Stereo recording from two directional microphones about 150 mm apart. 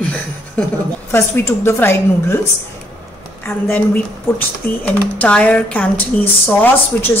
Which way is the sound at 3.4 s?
10° left (ahead or behind).